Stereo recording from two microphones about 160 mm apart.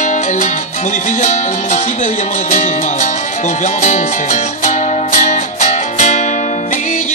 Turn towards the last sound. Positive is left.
turn(degrees=50)  # may be behind; listen again after turning